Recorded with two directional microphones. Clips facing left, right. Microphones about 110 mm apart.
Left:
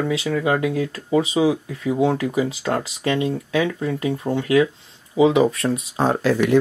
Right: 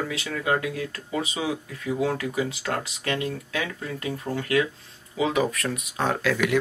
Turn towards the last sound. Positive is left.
turn(degrees=35)  # may be behind; listen again after turning